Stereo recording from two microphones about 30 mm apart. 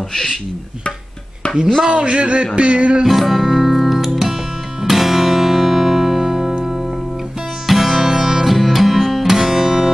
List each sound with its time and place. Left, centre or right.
1.9 s a man's voice: right
3.1 s music: centre
7.6 s music: centre